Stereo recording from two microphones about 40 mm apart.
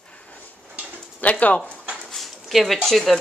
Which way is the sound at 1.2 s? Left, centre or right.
Left.